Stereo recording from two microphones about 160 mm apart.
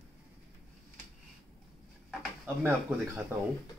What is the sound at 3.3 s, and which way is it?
Speech, 15° right (ahead or behind).